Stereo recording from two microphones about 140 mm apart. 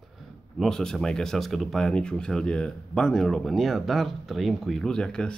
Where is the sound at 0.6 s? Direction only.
5° left (ahead or behind).